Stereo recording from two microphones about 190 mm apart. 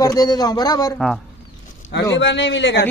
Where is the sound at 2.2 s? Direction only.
70° left (ahead or behind).